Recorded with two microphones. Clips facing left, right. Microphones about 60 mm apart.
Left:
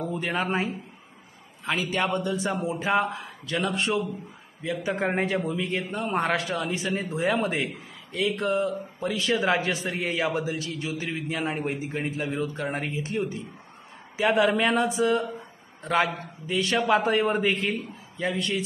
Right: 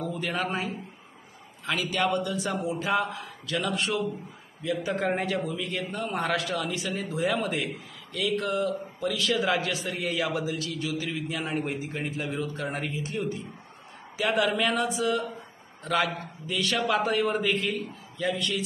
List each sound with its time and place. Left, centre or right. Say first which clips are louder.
0.4 s a man's voice: left 4 dB; left
1.7 s a man's voice: left 1 dB; left